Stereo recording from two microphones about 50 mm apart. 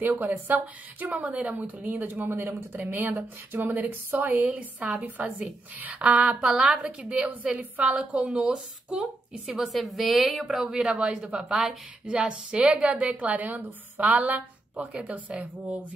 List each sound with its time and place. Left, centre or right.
0.2 s a woman's voice: right
1.2 s a woman's voice: right
2.9 s a woman's voice: right
4.4 s a woman's voice: right
9.5 s a woman's voice: centre
10.6 s speech: centre
12.1 s a woman's voice: right